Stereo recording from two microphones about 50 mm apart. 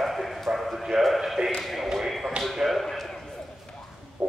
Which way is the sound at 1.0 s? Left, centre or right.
Centre.